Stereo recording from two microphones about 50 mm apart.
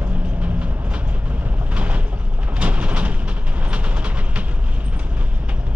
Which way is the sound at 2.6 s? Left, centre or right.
Right.